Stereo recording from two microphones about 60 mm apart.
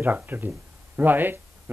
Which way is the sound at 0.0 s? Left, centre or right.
Right.